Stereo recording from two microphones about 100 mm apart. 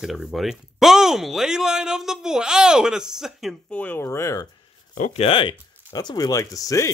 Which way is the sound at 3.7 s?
15° left (ahead or behind).